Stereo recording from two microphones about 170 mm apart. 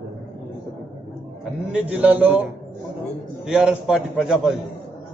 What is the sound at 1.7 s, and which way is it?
Speech, 5° right (ahead or behind).